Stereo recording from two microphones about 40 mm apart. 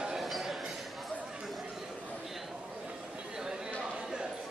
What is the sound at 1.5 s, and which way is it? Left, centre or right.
Chatter, centre.